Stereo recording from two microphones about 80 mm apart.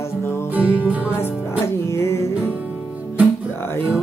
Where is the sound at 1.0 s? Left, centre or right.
Left.